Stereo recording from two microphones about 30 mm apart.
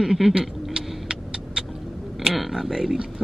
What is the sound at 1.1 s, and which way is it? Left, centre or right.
Vehicle, right.